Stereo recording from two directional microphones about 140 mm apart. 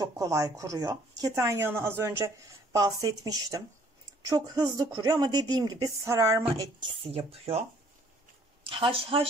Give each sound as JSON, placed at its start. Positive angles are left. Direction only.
{"t": 0.0, "sound": "speech", "side_deg": -25}
{"t": 6.6, "sound": "speech", "side_deg": -40}
{"t": 8.6, "sound": "speech", "side_deg": -40}